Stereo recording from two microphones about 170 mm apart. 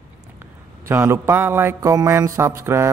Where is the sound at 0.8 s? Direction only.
15° right (ahead or behind).